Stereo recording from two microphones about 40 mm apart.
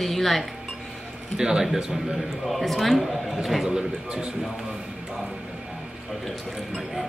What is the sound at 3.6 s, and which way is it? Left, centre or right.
Speech, right.